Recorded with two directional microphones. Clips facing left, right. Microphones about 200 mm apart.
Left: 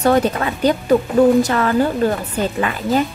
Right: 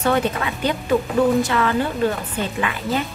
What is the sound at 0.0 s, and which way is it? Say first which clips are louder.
A woman's voice: left 5 dB; 40° left (ahead or behind).